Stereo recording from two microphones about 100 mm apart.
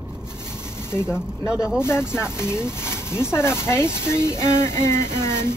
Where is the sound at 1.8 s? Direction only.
25° left (ahead or behind).